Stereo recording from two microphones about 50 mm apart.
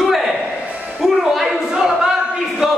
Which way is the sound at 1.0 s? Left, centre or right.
Centre.